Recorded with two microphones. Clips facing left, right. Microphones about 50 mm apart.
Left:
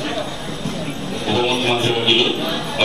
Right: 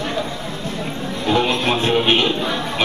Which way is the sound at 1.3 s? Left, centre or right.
Right.